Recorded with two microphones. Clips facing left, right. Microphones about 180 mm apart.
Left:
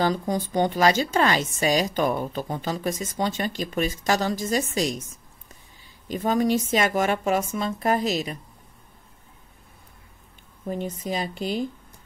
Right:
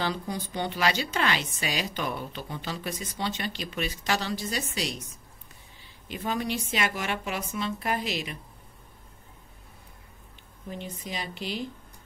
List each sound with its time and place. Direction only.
0.0 s speech: 45° left (ahead or behind)
10.7 s speech: 45° left (ahead or behind)